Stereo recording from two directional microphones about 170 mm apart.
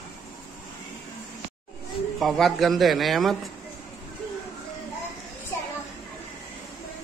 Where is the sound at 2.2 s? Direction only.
Centre (ahead or behind).